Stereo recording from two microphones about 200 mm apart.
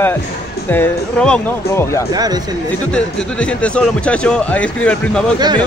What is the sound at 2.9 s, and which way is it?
Speech, 5° left (ahead or behind).